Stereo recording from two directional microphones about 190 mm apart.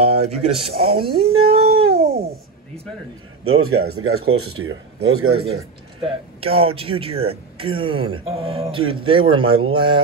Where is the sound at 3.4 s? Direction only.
90° right.